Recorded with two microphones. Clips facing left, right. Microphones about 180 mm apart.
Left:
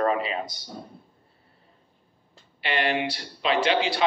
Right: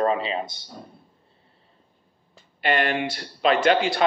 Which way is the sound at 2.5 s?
50° right (ahead or behind).